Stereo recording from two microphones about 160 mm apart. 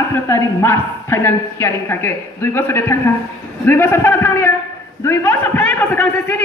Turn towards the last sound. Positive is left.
turn(degrees=10)  # may be behind; listen again after turning